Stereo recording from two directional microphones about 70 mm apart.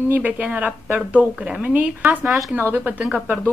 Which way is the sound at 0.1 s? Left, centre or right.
Right.